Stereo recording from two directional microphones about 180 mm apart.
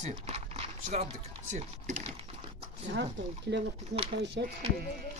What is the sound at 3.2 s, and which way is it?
Speech, 90° right.